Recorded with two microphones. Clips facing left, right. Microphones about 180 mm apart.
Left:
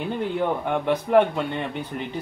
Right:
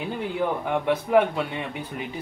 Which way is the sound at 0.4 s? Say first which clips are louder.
Right 1 dB; 5° right (ahead or behind).